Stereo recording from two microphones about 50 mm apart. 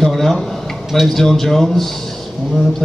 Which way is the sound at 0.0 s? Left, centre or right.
Centre.